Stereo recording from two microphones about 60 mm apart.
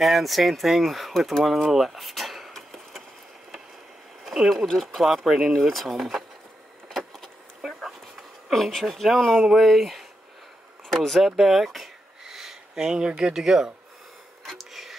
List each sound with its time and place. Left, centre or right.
0.0 s speech: centre
4.2 s speech: centre
6.9 s vehicle: centre
9.5 s speech: centre
14.4 s a sound: centre